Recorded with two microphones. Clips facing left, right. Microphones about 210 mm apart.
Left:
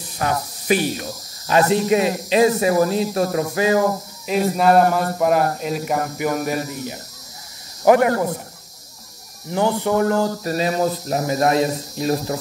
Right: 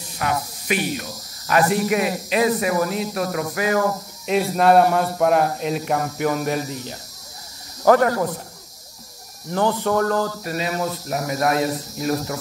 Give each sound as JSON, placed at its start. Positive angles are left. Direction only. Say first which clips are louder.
{"t": 0.2, "sound": "snake", "louder": "left 2 dB", "side_deg": 35}
{"t": 1.5, "sound": "speech", "louder": "left 3 dB", "side_deg": 25}
{"t": 4.3, "sound": "speech", "louder": "even", "side_deg": 0}
{"t": 7.8, "sound": "speech", "louder": "left 1 dB", "side_deg": 15}
{"t": 9.5, "sound": "speech", "louder": "left 1 dB", "side_deg": 15}
{"t": 10.4, "sound": "speech", "louder": "left 5 dB", "side_deg": 35}